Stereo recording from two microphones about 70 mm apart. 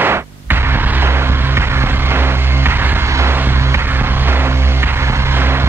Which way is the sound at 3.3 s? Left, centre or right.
Right.